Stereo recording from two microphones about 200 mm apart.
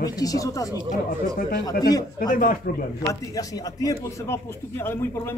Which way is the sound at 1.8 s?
20° left (ahead or behind).